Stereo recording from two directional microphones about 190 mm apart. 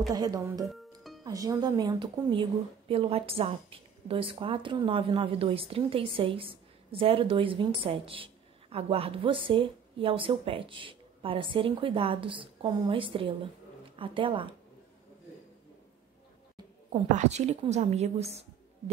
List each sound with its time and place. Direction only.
0.1 s a woman's voice: 20° right (ahead or behind)
17.1 s a woman's voice: 35° right (ahead or behind)